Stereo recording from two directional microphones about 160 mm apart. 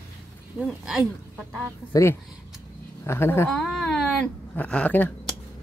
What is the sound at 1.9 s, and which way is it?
Speech, 20° left (ahead or behind).